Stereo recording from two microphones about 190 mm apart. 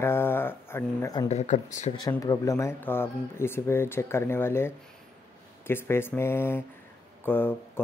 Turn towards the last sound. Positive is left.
turn(degrees=10)  # may be behind; listen again after turning